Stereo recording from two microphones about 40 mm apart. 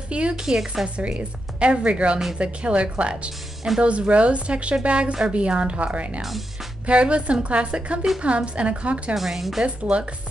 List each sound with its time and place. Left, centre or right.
0.1 s speech: right
0.4 s a woman's voice: centre
0.8 s a woman's voice: right
6.2 s music: centre
6.9 s a woman's voice: right
9.1 s speech: centre